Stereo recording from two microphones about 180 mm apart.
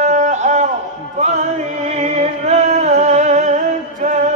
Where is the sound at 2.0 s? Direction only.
40° right (ahead or behind).